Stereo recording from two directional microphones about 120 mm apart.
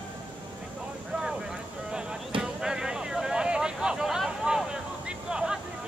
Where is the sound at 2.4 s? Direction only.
5° right (ahead or behind).